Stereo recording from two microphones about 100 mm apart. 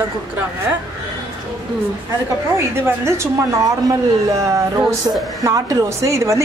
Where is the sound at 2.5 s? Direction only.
30° right (ahead or behind).